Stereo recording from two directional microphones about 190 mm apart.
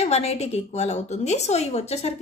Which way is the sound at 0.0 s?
35° left (ahead or behind).